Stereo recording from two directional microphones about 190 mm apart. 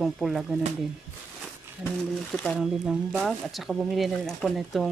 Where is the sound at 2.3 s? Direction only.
5° left (ahead or behind).